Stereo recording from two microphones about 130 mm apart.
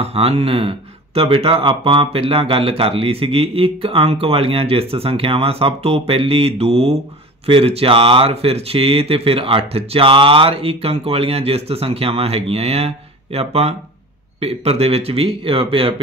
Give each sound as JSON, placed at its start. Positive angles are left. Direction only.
{"t": 0.0, "sound": "speech", "side_deg": -50}